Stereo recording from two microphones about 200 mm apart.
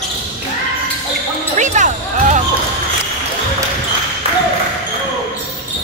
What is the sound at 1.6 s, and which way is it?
Music, 35° right (ahead or behind).